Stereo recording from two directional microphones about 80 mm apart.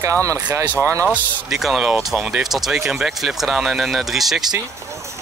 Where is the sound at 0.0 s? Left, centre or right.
Right.